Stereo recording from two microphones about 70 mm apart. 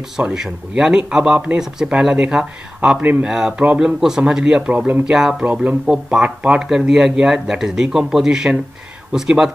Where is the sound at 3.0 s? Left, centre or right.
Right.